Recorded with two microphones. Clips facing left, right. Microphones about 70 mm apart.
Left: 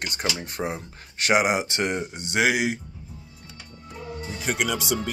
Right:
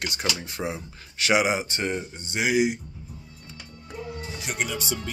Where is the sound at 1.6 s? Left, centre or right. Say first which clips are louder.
Left 2 dB; left.